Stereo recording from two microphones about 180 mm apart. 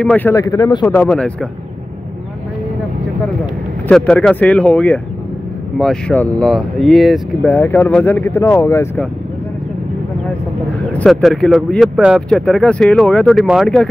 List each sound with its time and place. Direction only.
0.0 s speech: 10° left (ahead or behind)
0.8 s speech: 5° left (ahead or behind)
3.9 s speech: 5° left (ahead or behind)
10.9 s speech: 5° left (ahead or behind)